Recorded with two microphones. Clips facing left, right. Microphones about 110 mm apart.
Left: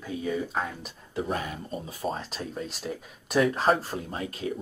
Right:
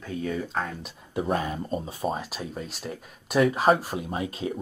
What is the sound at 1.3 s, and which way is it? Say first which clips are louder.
Speech: right 5 dB; 30° right (ahead or behind).